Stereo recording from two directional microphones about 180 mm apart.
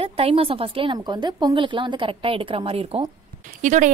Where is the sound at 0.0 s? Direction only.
30° right (ahead or behind).